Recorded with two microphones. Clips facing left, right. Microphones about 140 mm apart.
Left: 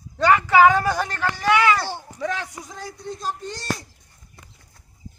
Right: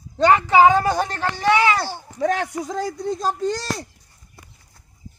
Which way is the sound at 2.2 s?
60° right (ahead or behind).